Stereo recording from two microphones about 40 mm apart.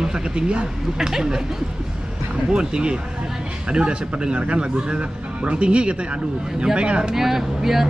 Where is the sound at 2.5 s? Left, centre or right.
Right.